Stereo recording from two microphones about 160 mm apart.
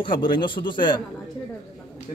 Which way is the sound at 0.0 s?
30° left (ahead or behind).